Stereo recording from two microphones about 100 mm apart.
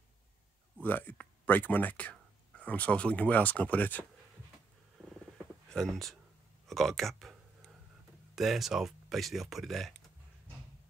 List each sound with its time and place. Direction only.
0.8 s speech: 20° left (ahead or behind)
5.7 s speech: 5° left (ahead or behind)
6.7 s clicking: centre (ahead or behind)
8.4 s speech: 5° right (ahead or behind)